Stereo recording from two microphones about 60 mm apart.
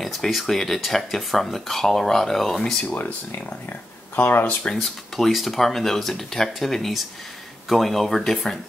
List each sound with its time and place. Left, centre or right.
0.0 s speech: centre
2.9 s speech: left
4.7 s speech: centre